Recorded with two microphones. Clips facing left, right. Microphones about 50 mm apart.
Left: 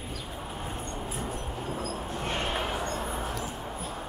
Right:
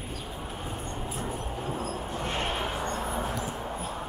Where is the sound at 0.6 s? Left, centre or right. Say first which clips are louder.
Even; centre.